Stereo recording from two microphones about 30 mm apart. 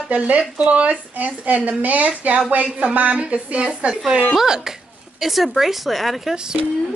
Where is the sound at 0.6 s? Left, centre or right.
Right.